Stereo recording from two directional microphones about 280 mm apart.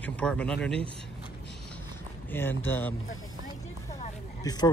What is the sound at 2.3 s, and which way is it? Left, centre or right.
Speech, centre.